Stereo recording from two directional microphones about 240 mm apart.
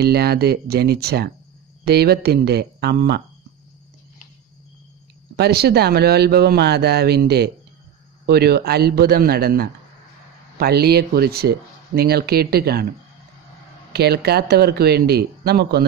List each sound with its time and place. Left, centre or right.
0.0 s speech: right
5.3 s speech: right
13.9 s speech: right